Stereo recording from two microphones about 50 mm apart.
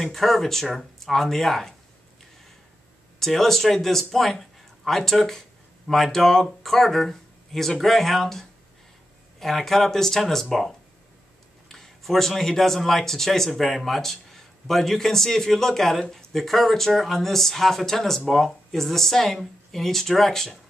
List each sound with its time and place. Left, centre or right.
0.0 s a man's voice: centre
3.2 s a man's voice: centre
11.7 s a man's voice: centre